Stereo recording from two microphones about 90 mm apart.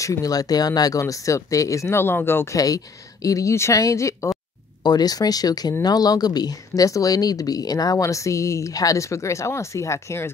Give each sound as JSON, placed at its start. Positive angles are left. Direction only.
{"t": 0.0, "sound": "speech", "side_deg": 40}
{"t": 2.5, "sound": "speech", "side_deg": 40}
{"t": 4.8, "sound": "speech", "side_deg": 50}